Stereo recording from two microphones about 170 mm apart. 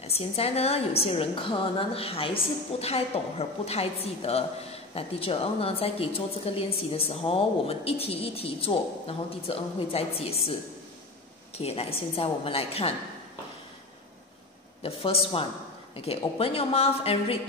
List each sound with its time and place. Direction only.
0.0 s a woman's voice: 35° left (ahead or behind)
11.5 s a woman's voice: 35° left (ahead or behind)
14.8 s a woman's voice: 35° left (ahead or behind)